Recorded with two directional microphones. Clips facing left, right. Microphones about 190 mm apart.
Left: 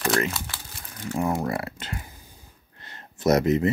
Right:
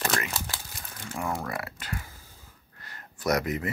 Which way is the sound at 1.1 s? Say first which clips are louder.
Left 6 dB; 20° left (ahead or behind).